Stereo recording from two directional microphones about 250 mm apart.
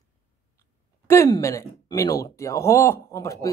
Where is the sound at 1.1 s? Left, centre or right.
Centre.